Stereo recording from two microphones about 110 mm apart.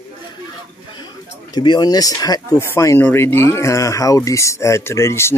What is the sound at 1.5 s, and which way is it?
Speech, 40° left (ahead or behind).